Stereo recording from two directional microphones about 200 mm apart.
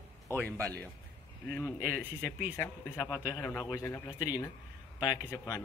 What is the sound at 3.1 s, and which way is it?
A man's voice, 20° left (ahead or behind).